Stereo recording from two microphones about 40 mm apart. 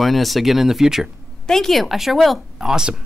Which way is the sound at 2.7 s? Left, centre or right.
Centre.